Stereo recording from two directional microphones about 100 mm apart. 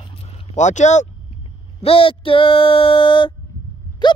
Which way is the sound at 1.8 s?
65° left (ahead or behind).